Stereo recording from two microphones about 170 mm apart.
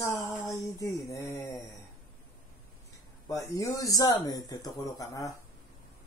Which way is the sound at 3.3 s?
20° left (ahead or behind).